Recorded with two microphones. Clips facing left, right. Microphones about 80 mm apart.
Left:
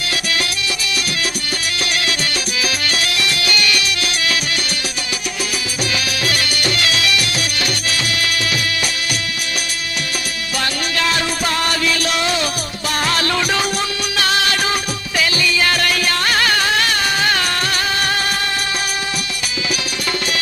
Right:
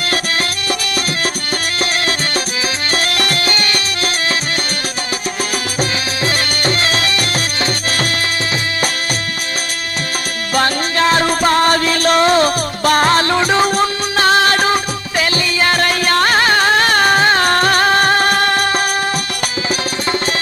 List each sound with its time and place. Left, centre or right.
2.9 s music: right
5.8 s music: right
10.5 s music: right